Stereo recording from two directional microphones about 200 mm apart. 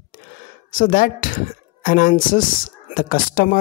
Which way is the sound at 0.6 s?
45° left (ahead or behind).